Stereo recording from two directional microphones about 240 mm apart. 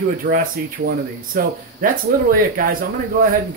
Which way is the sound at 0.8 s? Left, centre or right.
Right.